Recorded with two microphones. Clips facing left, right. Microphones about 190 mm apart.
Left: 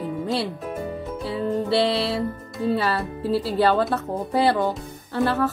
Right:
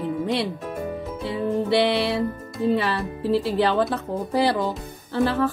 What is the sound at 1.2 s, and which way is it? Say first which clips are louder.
Music: right 1 dB; 15° right (ahead or behind).